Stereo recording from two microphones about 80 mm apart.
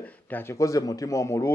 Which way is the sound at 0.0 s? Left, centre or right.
Left.